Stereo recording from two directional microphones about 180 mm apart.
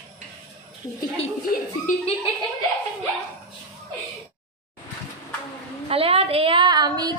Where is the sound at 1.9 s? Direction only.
45° left (ahead or behind).